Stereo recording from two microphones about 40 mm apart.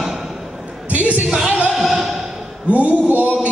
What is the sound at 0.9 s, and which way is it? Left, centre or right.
Speech, right.